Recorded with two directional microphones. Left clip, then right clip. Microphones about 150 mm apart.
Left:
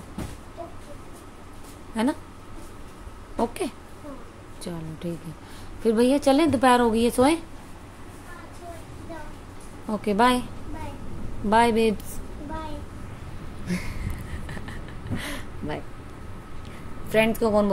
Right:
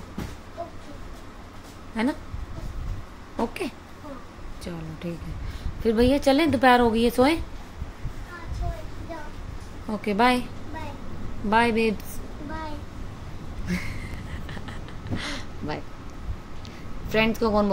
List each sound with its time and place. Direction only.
2.0 s a woman's voice: 15° left (ahead or behind)
3.3 s a woman's voice: 10° left (ahead or behind)
5.9 s a woman's voice: 15° left (ahead or behind)
9.8 s a woman's voice: 15° left (ahead or behind)
11.5 s a woman's voice: 15° left (ahead or behind)
13.7 s a sound: 10° left (ahead or behind)
17.1 s a woman's voice: 5° left (ahead or behind)